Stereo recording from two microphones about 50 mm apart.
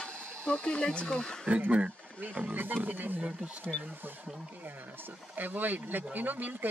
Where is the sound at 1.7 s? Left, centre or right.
Right.